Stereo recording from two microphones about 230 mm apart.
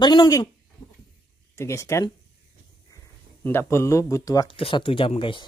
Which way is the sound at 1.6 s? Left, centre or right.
Centre.